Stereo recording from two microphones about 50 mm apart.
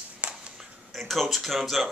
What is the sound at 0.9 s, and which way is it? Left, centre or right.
Speech, centre.